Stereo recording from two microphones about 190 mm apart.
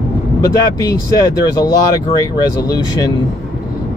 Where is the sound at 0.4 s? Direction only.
20° left (ahead or behind).